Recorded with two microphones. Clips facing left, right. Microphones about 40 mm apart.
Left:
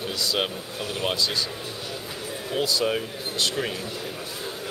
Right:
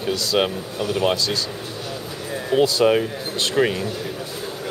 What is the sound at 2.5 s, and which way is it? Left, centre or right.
Speech, right.